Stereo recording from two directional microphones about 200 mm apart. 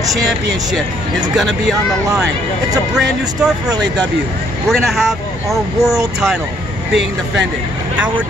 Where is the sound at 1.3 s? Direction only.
Centre (ahead or behind).